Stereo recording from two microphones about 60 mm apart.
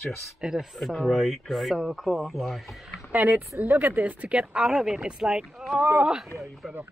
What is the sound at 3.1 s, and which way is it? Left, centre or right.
Speech, right.